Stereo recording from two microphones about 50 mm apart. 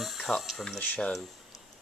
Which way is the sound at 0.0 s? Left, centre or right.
Centre.